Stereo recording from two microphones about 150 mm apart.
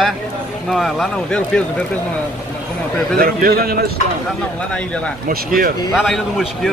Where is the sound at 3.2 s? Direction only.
85° right.